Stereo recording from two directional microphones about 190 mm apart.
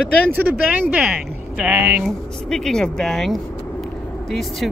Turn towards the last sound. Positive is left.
turn(degrees=0)  # may be behind; listen again after turning